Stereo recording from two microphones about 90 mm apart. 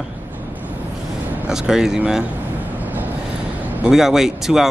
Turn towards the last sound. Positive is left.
turn(degrees=-5)  # may be behind; listen again after turning